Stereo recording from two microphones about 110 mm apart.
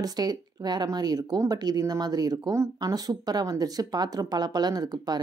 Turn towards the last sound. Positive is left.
turn(degrees=-35)  # may be behind; listen again after turning